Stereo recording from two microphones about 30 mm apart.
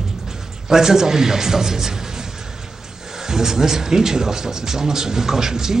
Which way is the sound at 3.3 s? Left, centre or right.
Centre.